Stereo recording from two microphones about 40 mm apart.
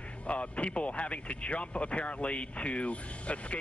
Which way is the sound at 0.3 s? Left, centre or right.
Left.